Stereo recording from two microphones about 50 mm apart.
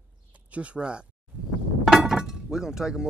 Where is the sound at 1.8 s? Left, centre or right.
Centre.